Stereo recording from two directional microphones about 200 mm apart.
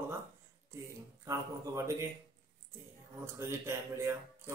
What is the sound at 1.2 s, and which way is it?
Speech, 15° right (ahead or behind).